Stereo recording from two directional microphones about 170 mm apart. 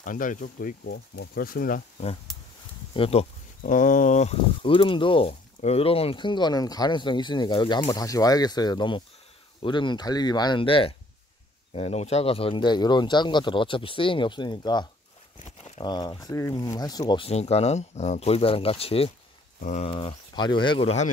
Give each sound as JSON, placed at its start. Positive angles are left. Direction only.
{"t": 0.0, "sound": "speech", "side_deg": 50}
{"t": 0.8, "sound": "speech", "side_deg": 75}
{"t": 2.9, "sound": "speech", "side_deg": 35}
{"t": 3.6, "sound": "speech", "side_deg": 50}
{"t": 15.3, "sound": "a sound", "side_deg": 40}
{"t": 15.8, "sound": "speech", "side_deg": 25}
{"t": 17.3, "sound": "speech", "side_deg": 40}
{"t": 19.6, "sound": "speech", "side_deg": 45}
{"t": 19.9, "sound": "speech", "side_deg": 30}